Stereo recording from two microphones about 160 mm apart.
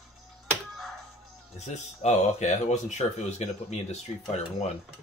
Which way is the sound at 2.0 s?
45° left (ahead or behind).